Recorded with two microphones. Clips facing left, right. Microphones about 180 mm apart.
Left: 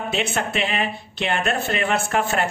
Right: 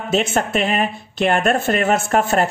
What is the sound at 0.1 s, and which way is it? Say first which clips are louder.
Speech: right 8 dB; 45° right (ahead or behind).